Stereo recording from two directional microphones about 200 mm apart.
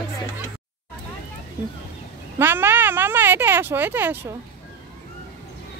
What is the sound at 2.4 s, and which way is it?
Speech, 10° right (ahead or behind).